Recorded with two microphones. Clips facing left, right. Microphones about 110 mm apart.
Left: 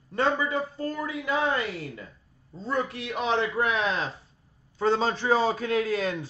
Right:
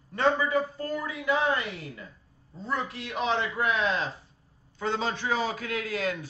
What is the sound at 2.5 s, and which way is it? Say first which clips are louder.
A man's voice: left 3 dB; 25° left (ahead or behind).